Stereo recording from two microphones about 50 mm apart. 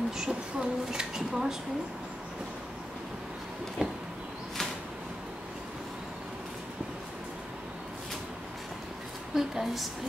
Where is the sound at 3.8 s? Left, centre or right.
Centre.